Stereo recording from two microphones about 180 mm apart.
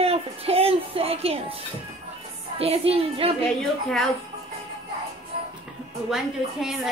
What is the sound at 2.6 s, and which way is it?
Speech, 35° right (ahead or behind).